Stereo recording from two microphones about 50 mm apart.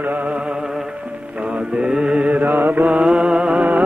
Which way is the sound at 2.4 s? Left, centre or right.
Right.